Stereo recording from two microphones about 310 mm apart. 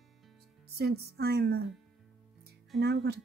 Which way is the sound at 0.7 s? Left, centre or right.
Right.